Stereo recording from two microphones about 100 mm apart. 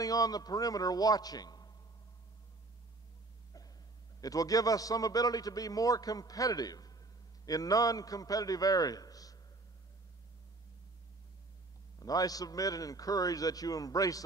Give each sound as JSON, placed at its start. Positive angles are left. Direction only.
{"t": 0.0, "sound": "a man's voice", "side_deg": 35}
{"t": 4.2, "sound": "a man's voice", "side_deg": 35}
{"t": 12.0, "sound": "a man's voice", "side_deg": 40}